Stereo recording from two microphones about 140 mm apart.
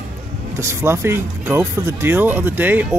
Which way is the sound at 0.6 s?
20° right (ahead or behind).